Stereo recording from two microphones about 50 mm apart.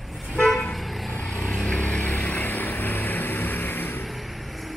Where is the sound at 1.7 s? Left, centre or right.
Left.